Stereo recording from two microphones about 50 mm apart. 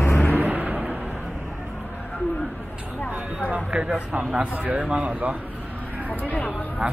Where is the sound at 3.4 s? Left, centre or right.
Right.